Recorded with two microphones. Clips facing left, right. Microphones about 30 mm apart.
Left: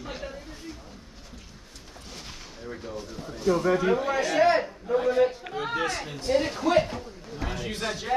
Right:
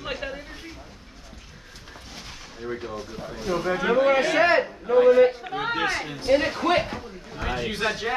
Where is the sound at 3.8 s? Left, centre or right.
Right.